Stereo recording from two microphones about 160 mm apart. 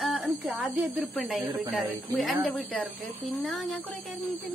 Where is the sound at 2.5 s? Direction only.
5° left (ahead or behind).